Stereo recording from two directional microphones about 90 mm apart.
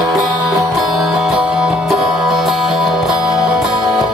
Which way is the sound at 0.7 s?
5° right (ahead or behind).